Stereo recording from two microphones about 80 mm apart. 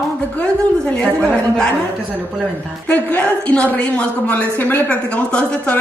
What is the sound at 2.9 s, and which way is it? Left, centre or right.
A woman's voice, centre.